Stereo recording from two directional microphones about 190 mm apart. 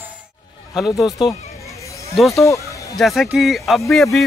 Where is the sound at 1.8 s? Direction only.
15° left (ahead or behind).